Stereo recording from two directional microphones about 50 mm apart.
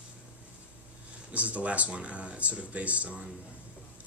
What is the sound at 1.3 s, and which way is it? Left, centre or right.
Speech, right.